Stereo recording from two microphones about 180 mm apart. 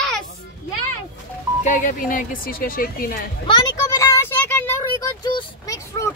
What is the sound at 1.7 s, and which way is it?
Speech, 50° left (ahead or behind).